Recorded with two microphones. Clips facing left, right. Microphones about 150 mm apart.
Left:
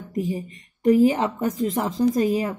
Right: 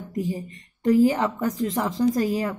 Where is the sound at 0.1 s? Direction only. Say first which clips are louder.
Left 2 dB; 20° left (ahead or behind).